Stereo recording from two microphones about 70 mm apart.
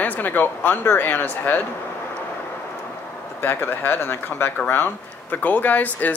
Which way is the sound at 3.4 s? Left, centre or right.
Left.